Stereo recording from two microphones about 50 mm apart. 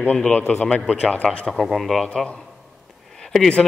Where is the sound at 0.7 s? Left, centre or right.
Centre.